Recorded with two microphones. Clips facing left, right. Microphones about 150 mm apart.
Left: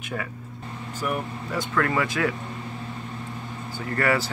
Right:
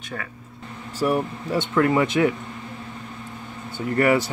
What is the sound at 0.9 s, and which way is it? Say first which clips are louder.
Speech: right 7 dB; 30° right (ahead or behind).